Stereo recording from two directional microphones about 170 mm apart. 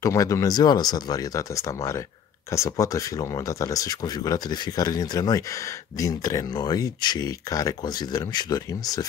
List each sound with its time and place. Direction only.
0.0 s speech: 20° left (ahead or behind)